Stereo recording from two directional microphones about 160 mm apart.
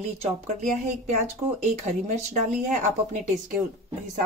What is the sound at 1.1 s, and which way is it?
A woman's voice, 45° right (ahead or behind).